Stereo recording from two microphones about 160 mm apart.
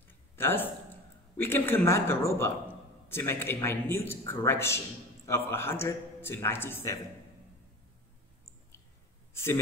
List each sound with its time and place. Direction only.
0.4 s a man's voice: 15° left (ahead or behind)
9.3 s a man's voice: 15° left (ahead or behind)